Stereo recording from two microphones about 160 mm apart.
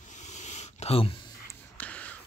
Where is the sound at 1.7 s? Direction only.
10° left (ahead or behind).